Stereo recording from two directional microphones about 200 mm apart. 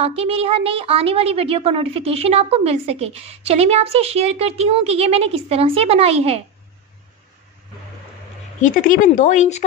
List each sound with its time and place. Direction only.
0.0 s a child's voice: 30° right (ahead or behind)
8.5 s speech: 40° left (ahead or behind)